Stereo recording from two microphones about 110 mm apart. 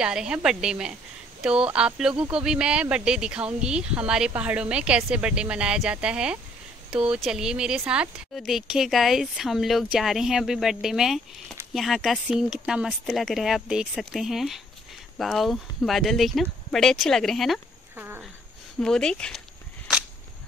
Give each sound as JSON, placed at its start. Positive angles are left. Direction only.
{"t": 0.0, "sound": "speech", "side_deg": -5}
{"t": 17.9, "sound": "dog", "side_deg": -20}
{"t": 18.8, "sound": "speech", "side_deg": 5}